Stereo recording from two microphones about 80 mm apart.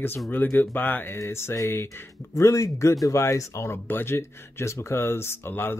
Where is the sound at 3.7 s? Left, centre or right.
Left.